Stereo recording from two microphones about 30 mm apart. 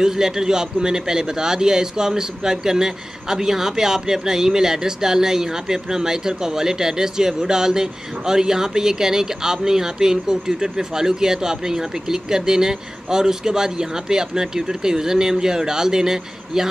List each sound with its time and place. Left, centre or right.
0.0 s a man's voice: centre